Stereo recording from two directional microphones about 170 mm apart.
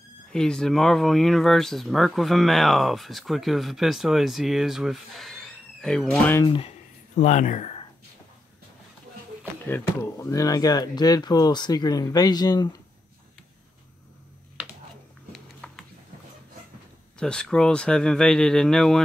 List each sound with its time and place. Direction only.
0.3 s speech: 5° left (ahead or behind)
6.4 s speech: 30° left (ahead or behind)
7.2 s speech: 45° left (ahead or behind)
9.7 s speech: 15° left (ahead or behind)
15.3 s a sound: 5° left (ahead or behind)
17.2 s speech: 5° left (ahead or behind)